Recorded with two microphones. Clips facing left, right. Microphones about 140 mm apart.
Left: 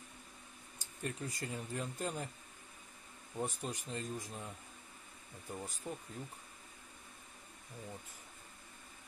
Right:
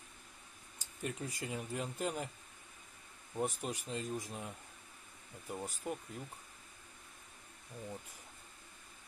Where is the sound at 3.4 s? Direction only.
15° right (ahead or behind).